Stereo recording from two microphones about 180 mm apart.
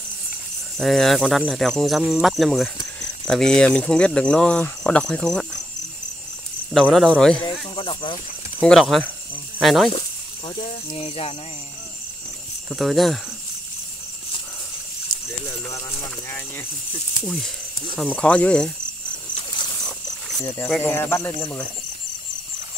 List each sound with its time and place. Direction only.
0.7 s speech: centre (ahead or behind)
6.7 s speech: centre (ahead or behind)
7.7 s snake: 25° left (ahead or behind)
8.5 s speech: 5° left (ahead or behind)
9.9 s speech: 30° left (ahead or behind)
12.6 s speech: centre (ahead or behind)
15.4 s speech: 15° left (ahead or behind)
20.4 s speech: 15° left (ahead or behind)